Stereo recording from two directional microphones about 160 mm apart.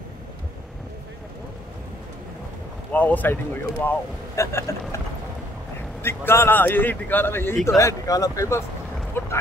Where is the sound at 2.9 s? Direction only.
10° left (ahead or behind).